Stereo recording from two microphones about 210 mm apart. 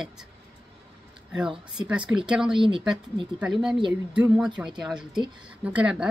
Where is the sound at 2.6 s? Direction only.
25° right (ahead or behind).